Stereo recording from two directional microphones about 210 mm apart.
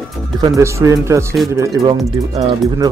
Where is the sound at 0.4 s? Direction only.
15° right (ahead or behind).